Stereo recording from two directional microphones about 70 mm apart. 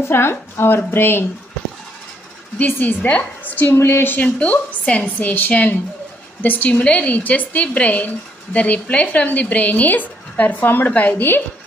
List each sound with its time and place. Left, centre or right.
0.1 s speech: left
2.6 s a woman's voice: left
4.4 s a woman's voice: centre